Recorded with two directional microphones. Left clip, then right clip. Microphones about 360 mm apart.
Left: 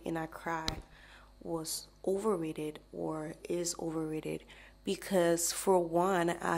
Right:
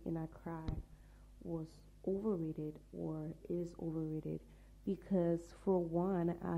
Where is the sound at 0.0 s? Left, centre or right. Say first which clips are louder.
Left 8 dB; centre.